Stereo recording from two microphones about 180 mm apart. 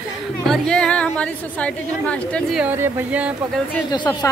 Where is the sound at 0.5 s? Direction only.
5° left (ahead or behind).